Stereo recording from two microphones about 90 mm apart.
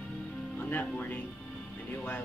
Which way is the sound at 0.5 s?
20° left (ahead or behind).